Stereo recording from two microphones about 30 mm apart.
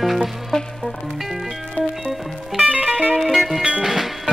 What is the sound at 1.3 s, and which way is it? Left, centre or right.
Music, centre.